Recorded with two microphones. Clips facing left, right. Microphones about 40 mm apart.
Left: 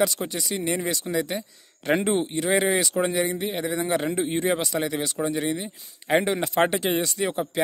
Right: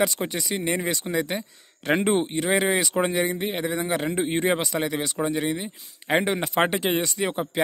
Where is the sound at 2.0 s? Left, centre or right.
Centre.